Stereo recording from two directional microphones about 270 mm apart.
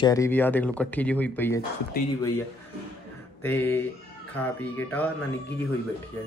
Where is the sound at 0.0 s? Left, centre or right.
Centre.